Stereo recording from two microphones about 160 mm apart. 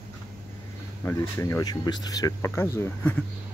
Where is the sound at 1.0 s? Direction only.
20° left (ahead or behind).